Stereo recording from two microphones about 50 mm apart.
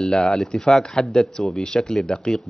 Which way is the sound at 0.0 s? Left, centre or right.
Centre.